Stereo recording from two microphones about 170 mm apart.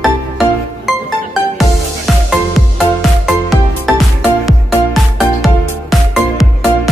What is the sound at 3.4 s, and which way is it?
Music, centre (ahead or behind).